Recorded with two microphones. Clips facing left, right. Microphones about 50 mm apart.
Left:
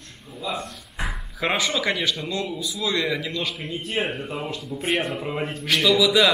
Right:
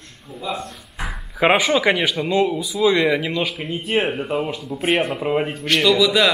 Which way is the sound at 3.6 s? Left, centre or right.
Right.